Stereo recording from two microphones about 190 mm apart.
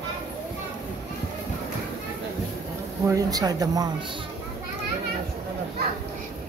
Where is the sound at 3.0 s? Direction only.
20° right (ahead or behind).